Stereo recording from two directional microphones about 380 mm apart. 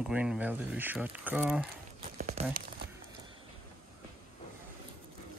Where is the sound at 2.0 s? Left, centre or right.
Centre.